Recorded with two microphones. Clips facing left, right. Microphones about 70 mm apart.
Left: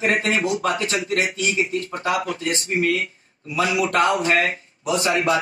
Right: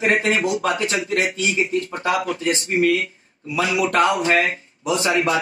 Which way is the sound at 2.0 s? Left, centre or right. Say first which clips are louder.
Right 2 dB; centre.